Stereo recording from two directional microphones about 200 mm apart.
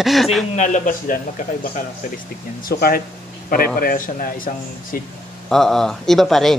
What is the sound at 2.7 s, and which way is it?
A man's voice, 50° left (ahead or behind).